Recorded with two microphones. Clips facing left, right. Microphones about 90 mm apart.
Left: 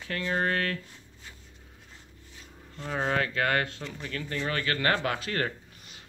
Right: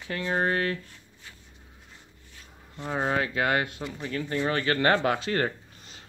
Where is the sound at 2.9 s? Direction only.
15° right (ahead or behind).